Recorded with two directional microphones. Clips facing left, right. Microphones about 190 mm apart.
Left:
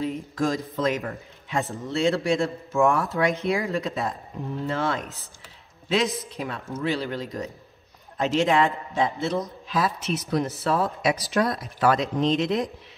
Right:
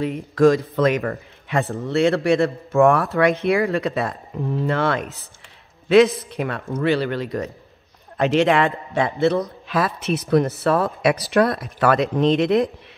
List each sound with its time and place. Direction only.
0.7 s speech: 65° right (ahead or behind)